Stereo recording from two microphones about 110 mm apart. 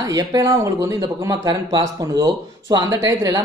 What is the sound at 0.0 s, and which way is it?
A man's voice, 35° right (ahead or behind).